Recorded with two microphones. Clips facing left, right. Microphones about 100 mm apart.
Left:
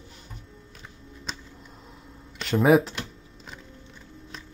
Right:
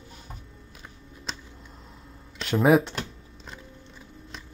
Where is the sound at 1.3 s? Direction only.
Centre (ahead or behind).